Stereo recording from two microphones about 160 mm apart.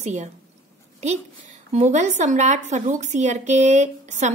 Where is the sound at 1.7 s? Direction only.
45° right (ahead or behind).